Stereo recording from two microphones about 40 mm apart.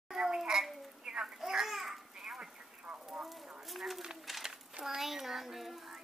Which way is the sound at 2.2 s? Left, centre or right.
Centre.